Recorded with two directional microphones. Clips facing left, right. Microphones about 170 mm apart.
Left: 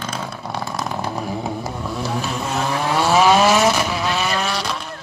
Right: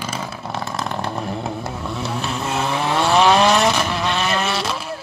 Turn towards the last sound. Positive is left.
turn(degrees=-5)  # may be behind; listen again after turning